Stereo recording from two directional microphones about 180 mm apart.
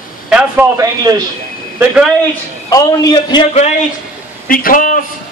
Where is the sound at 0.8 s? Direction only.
20° right (ahead or behind).